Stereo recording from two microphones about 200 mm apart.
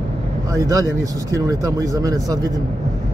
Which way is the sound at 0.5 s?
15° right (ahead or behind).